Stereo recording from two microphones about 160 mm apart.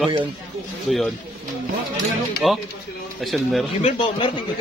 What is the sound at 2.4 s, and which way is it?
Speech, centre (ahead or behind).